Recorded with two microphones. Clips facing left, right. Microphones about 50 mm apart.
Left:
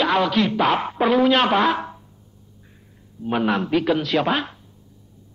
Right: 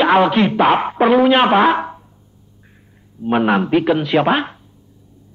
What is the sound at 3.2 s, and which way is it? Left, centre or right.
A man's voice, right.